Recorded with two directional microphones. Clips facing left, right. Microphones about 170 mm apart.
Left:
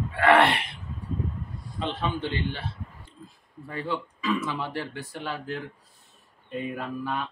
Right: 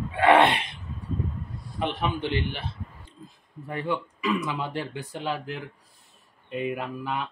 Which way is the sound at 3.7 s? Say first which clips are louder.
Right 2 dB; 15° right (ahead or behind).